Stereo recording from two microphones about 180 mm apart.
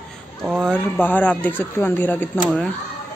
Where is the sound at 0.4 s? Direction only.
Centre (ahead or behind).